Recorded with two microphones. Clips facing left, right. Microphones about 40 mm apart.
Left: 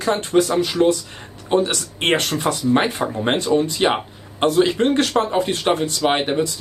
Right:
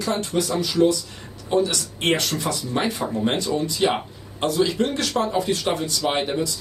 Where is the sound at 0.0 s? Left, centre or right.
Left.